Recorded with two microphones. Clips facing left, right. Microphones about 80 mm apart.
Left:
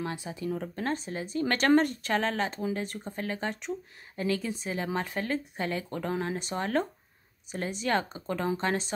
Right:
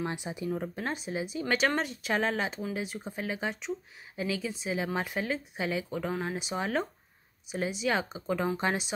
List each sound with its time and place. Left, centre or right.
0.0 s speech: centre